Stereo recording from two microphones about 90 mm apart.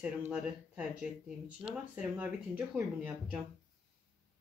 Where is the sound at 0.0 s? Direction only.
15° right (ahead or behind).